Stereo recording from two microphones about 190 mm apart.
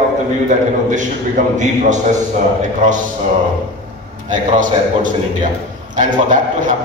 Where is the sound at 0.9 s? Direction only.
40° right (ahead or behind).